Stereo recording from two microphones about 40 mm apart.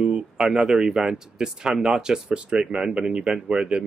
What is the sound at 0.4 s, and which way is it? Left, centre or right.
Speech, centre.